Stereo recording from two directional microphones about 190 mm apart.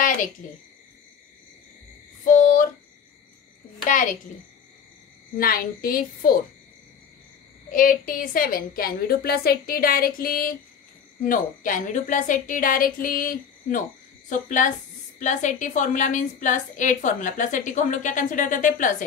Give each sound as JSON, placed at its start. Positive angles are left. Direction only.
{"t": 2.2, "sound": "a sound", "side_deg": 45}
{"t": 3.8, "sound": "a woman's voice", "side_deg": 45}
{"t": 5.4, "sound": "a woman's voice", "side_deg": 50}
{"t": 7.7, "sound": "a woman's voice", "side_deg": 45}
{"t": 15.1, "sound": "a woman's voice", "side_deg": 40}